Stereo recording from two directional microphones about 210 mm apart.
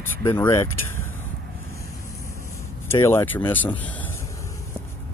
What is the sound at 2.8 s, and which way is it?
Speech, 10° left (ahead or behind).